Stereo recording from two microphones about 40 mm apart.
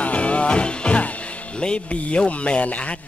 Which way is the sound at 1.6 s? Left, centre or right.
Left.